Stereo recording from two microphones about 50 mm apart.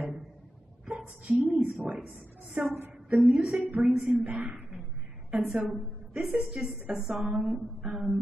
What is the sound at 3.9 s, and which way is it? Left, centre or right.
A woman's voice, centre.